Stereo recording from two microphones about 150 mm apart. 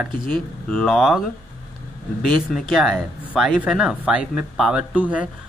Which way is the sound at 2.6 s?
Centre (ahead or behind).